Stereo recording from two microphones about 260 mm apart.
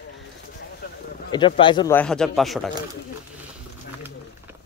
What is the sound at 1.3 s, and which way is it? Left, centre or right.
Speech, centre.